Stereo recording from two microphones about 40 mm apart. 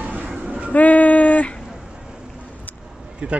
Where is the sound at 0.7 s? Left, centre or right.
Left.